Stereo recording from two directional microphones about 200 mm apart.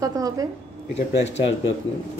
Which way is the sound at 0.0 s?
15° right (ahead or behind).